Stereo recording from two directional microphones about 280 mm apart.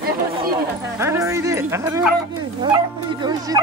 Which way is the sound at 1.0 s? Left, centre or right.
Centre.